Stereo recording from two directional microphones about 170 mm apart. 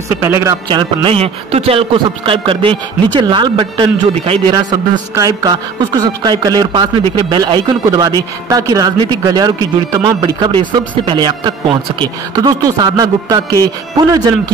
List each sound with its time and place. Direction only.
0.1 s speech: 15° right (ahead or behind)
0.7 s a man's voice: 30° right (ahead or behind)